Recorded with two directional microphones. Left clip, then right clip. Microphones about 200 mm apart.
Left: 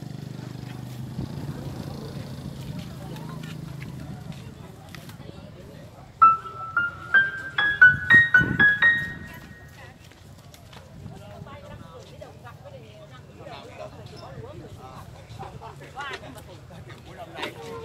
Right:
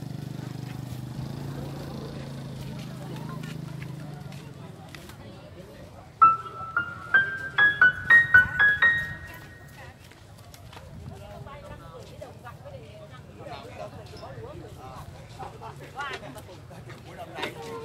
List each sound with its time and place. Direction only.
0.4 s vehicle: 10° right (ahead or behind)
6.1 s music: 55° right (ahead or behind)
15.6 s vehicle: 5° left (ahead or behind)